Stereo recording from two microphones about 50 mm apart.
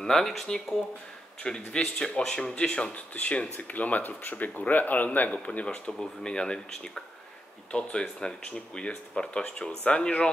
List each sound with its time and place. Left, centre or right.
0.0 s speech: centre
1.4 s speech: centre
5.7 s speech: centre